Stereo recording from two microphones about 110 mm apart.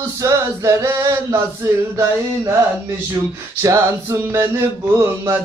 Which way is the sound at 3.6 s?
30° right (ahead or behind).